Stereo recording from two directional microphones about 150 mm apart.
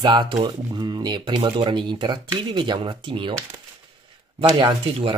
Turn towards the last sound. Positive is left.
turn(degrees=-35)  # may be behind; listen again after turning